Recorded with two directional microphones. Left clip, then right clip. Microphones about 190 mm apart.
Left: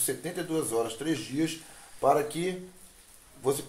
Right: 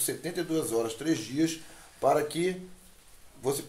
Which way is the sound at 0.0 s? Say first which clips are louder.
Even; 5° right (ahead or behind).